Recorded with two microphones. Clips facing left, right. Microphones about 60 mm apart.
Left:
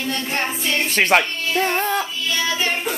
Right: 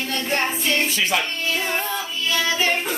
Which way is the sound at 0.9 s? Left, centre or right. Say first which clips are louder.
Left 6 dB; left.